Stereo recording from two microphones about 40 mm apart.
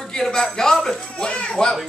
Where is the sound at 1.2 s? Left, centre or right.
Left.